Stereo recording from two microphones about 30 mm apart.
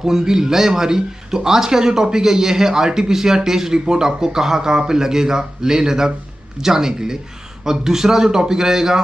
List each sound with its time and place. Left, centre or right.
0.0 s speech: centre